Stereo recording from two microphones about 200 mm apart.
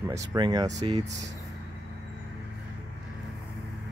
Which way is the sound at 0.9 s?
35° right (ahead or behind).